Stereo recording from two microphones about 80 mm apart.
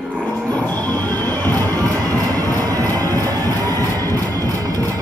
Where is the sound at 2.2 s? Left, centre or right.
Right.